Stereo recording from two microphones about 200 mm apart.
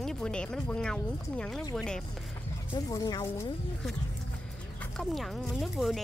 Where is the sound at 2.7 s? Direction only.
20° left (ahead or behind).